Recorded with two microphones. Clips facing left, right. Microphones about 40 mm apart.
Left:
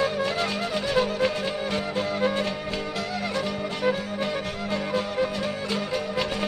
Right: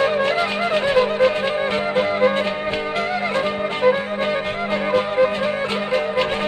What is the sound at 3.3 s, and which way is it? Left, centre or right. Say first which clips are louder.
Music: right 7 dB; right.